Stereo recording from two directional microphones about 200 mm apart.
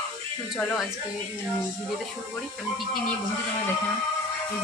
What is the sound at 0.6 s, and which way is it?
Speech, 5° left (ahead or behind).